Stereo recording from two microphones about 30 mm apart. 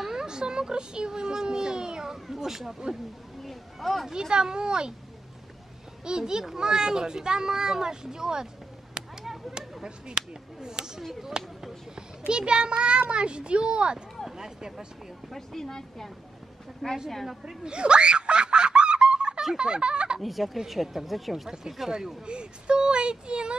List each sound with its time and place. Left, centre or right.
0.0 s speech: centre
2.2 s speech: centre
3.4 s speech: centre
4.1 s speech: right
6.0 s speech: right
9.0 s a sound: right
9.8 s a child's voice: right
14.3 s speech: right
15.3 s speech: centre
16.8 s speech: centre
17.5 s a sound: right
19.5 s speech: right
20.2 s speech: centre
22.2 s speech: right